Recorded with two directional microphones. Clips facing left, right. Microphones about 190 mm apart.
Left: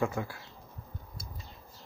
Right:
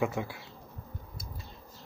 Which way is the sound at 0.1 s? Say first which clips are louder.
Right 1 dB; 20° right (ahead or behind).